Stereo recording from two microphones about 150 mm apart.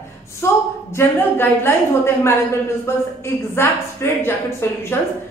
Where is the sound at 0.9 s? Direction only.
15° left (ahead or behind).